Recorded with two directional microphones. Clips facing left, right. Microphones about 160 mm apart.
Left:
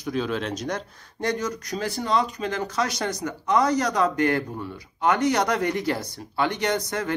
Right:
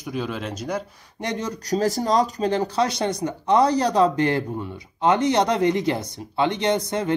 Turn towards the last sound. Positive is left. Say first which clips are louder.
# right 4 dB
turn(degrees=-25)  # may be behind; listen again after turning